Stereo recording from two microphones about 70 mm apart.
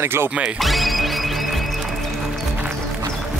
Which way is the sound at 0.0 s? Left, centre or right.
Right.